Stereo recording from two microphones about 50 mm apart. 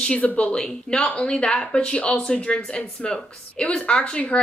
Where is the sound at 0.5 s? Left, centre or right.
Centre.